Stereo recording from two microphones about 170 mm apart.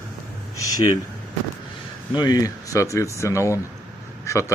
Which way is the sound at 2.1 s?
25° left (ahead or behind).